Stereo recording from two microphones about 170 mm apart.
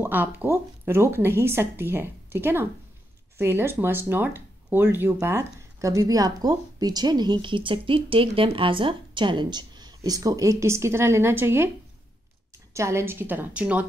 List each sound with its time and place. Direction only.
0.0 s a woman's voice: 10° right (ahead or behind)
12.7 s a woman's voice: 15° right (ahead or behind)